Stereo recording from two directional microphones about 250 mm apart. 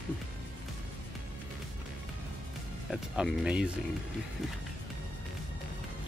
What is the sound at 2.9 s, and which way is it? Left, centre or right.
Speech, centre.